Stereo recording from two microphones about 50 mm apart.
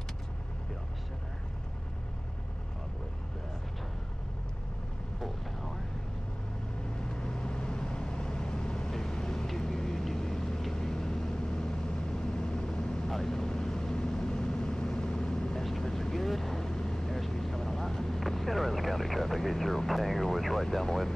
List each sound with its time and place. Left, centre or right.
5.2 s vehicle: centre
7.2 s vehicle: centre